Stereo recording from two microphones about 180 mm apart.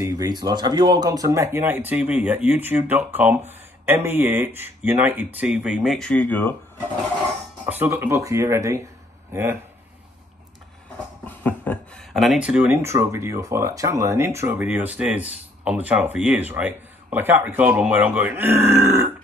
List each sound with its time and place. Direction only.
0.0 s speech: 20° right (ahead or behind); by 6.5 s 10° left (ahead or behind)
7.6 s speech: 10° right (ahead or behind)
11.2 s speech: 10° left (ahead or behind); by 19.0 s 15° right (ahead or behind)